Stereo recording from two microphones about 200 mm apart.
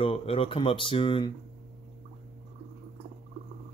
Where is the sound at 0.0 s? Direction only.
30° left (ahead or behind).